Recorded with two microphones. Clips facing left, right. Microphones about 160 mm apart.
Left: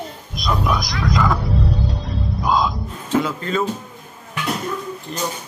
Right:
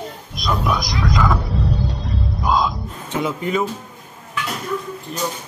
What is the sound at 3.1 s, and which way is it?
Speech, 20° right (ahead or behind).